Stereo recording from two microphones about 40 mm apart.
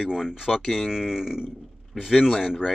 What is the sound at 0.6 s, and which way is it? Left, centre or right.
Speech, centre.